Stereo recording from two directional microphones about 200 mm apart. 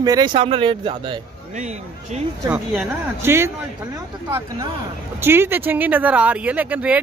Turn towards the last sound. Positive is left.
turn(degrees=-5)  # may be behind; listen again after turning